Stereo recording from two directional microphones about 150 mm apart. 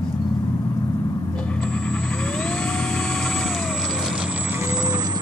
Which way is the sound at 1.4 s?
5° left (ahead or behind).